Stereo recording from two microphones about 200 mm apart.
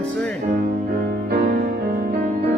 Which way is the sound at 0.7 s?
45° right (ahead or behind).